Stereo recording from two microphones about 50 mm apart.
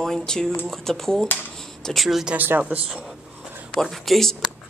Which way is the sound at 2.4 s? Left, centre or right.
Right.